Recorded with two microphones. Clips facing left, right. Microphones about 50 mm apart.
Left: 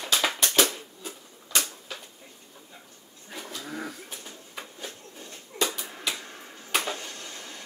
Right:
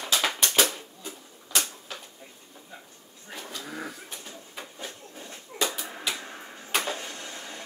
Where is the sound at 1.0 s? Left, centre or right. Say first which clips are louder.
Even; centre.